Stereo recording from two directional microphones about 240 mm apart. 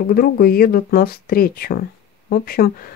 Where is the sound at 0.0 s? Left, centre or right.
Left.